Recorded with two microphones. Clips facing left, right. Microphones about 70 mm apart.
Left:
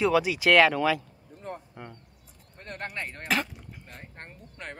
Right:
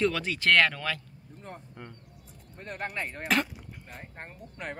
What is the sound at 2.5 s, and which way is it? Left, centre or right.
Speech, centre.